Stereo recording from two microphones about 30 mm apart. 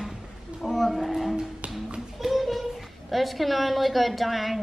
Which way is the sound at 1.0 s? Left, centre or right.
Centre.